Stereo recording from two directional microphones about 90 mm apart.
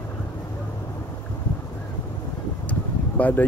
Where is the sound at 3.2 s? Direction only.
20° left (ahead or behind).